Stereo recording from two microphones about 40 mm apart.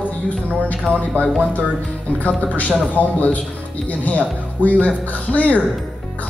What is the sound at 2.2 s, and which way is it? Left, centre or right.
A man's voice, left.